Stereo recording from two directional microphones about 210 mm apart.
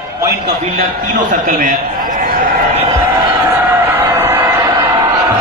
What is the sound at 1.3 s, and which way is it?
Speech, 40° right (ahead or behind).